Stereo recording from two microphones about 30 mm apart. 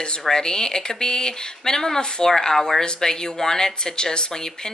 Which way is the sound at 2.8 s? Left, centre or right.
Left.